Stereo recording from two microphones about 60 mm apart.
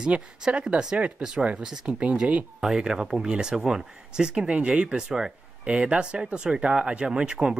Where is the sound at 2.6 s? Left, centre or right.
Centre.